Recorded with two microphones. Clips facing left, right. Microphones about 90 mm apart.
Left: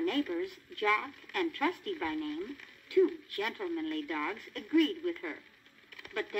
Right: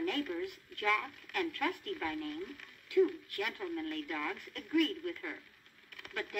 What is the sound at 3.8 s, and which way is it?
Speech, 35° left (ahead or behind).